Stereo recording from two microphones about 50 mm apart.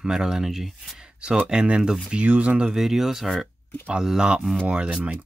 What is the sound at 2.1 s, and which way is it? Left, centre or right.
Speech, right.